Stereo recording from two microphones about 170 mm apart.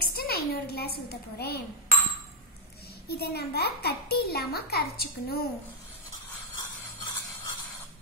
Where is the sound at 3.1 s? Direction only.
70° left (ahead or behind).